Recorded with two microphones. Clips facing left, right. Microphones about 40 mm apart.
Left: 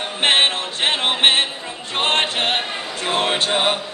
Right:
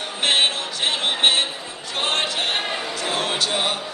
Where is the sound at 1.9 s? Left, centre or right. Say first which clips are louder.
Left 4 dB; left.